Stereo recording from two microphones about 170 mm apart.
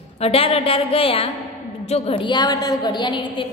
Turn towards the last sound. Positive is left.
turn(degrees=30)  # may be behind; listen again after turning